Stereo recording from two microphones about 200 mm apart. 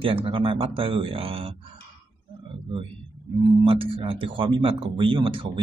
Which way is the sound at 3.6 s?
25° right (ahead or behind).